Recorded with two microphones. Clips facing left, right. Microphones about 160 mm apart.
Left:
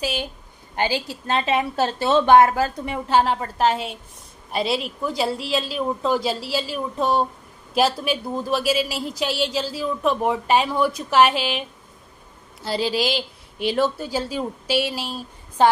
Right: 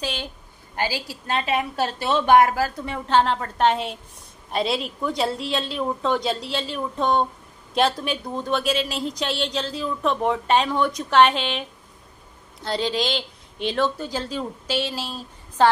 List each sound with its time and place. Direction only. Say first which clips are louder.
0.0 s a sound: left 3 dB; 10° left (ahead or behind)
0.7 s a woman's voice: left 3 dB; 20° left (ahead or behind)
12.6 s a woman's voice: left 2 dB; 5° left (ahead or behind)